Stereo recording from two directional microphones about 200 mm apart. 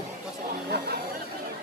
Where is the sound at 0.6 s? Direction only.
55° right (ahead or behind).